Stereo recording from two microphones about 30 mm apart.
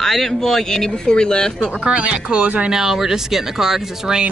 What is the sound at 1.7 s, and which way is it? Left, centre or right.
Speech, right.